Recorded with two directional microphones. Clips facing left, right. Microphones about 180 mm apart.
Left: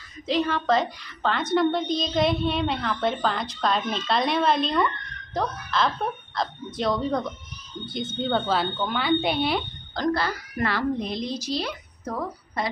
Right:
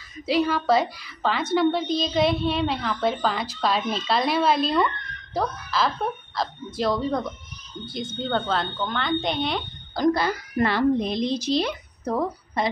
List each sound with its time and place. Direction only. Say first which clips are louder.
0.3 s a woman's voice: right 2 dB; 5° right (ahead or behind)
9.9 s speech: right 4 dB; 15° right (ahead or behind)